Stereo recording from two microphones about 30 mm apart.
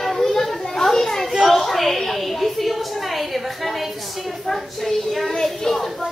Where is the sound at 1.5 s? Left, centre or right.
Centre.